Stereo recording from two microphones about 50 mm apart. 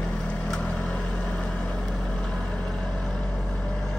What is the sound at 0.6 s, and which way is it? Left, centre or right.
Vehicle, left.